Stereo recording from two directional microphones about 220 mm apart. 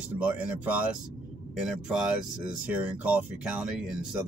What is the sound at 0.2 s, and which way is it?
Speech, 5° right (ahead or behind).